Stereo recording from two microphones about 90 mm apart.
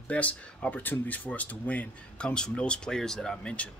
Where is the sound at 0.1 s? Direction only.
15° left (ahead or behind).